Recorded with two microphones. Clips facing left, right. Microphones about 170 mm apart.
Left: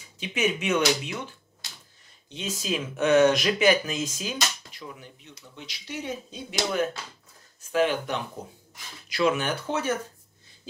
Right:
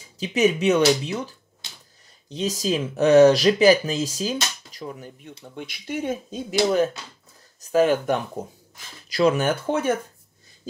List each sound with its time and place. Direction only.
0.2 s speech: 35° right (ahead or behind)
7.6 s speech: 45° right (ahead or behind)
9.1 s speech: 35° right (ahead or behind); by 9.9 s 55° right (ahead or behind)